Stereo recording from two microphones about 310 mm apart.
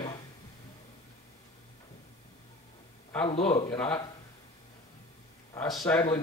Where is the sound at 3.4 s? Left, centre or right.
Centre.